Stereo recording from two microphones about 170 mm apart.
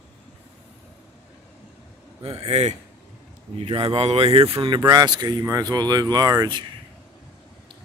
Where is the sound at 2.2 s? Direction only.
35° right (ahead or behind).